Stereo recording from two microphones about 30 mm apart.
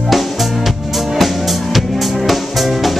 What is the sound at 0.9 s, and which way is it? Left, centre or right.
Music, centre.